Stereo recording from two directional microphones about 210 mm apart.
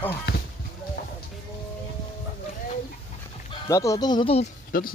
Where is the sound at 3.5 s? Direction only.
15° left (ahead or behind).